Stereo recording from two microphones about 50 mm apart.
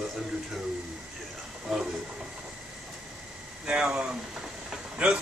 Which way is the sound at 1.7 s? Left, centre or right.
Centre.